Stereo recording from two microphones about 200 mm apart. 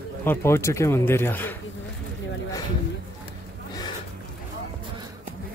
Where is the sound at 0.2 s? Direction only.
10° left (ahead or behind).